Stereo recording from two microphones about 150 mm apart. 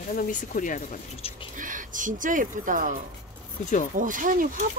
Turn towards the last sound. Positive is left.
turn(degrees=-65)  # may be behind; listen again after turning